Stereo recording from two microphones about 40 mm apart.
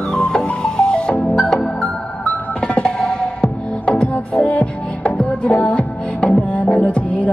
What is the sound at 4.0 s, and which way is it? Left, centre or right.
Music, left.